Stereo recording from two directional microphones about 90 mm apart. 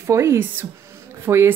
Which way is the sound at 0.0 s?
30° right (ahead or behind).